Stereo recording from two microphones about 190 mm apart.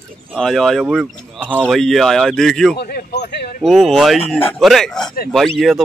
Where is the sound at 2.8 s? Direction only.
55° left (ahead or behind).